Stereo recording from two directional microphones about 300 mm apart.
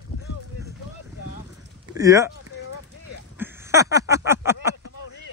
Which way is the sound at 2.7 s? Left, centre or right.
Left.